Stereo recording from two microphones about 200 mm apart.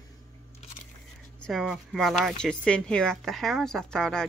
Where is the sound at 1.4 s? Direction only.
Centre (ahead or behind).